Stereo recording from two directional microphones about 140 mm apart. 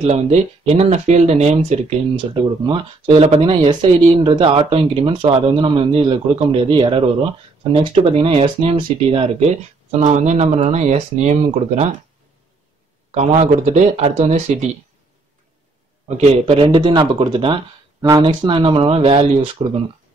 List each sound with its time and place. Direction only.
0.0 s speech: 50° right (ahead or behind)
13.1 s speech: 55° right (ahead or behind)
16.2 s speech: 45° right (ahead or behind)